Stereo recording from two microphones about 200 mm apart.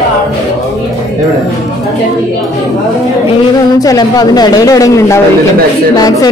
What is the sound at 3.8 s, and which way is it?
Speech, 20° left (ahead or behind).